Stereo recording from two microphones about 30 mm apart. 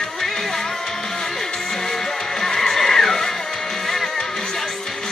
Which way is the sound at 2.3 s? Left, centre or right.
Centre.